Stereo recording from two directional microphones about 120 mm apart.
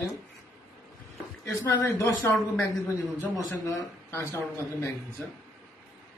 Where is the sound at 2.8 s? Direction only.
15° left (ahead or behind).